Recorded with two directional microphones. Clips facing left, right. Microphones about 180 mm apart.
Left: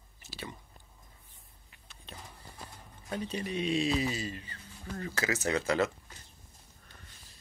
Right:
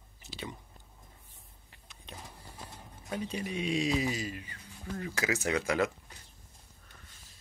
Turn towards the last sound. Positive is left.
turn(degrees=-10)  # may be behind; listen again after turning